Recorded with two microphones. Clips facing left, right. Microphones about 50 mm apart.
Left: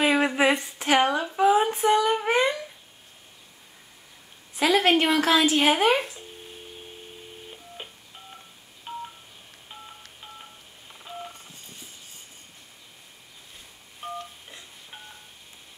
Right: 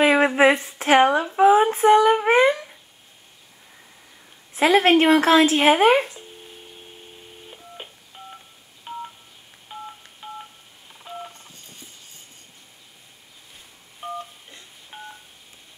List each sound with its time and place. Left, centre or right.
0.0 s a sound: right
4.6 s speech: right
7.5 s telephone: centre
8.9 s telephone dialing: centre
10.2 s telephone dialing: centre
14.0 s telephone dialing: centre